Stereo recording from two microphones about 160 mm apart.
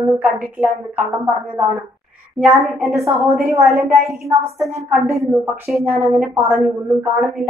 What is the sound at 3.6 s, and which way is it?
Speech, centre (ahead or behind).